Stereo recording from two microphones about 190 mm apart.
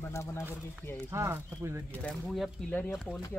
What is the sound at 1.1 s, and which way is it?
Speech, 15° right (ahead or behind).